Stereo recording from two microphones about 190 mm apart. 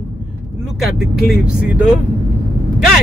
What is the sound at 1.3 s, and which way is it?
Speech, 5° right (ahead or behind).